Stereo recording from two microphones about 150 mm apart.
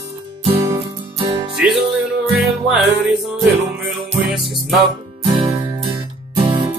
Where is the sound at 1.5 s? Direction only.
5° right (ahead or behind).